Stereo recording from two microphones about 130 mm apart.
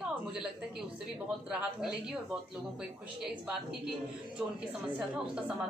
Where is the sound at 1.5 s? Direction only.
5° right (ahead or behind).